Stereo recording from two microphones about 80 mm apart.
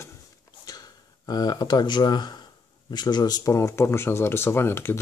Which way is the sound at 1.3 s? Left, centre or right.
Left.